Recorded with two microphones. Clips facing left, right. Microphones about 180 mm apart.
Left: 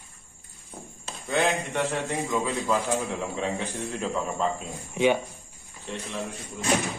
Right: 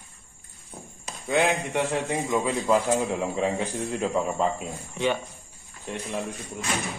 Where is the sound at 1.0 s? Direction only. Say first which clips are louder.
Right 3 dB; 15° right (ahead or behind).